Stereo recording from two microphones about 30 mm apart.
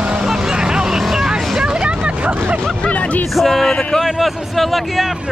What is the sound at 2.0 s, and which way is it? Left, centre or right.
Vehicle, right.